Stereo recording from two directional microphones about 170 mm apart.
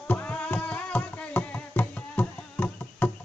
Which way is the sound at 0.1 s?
10° left (ahead or behind).